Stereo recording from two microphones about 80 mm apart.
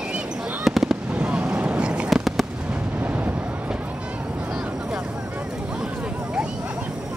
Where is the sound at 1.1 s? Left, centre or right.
Centre.